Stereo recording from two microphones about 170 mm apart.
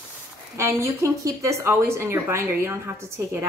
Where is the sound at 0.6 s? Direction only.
15° right (ahead or behind).